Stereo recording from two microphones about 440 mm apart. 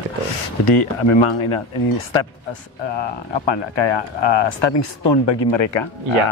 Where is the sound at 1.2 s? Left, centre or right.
Left.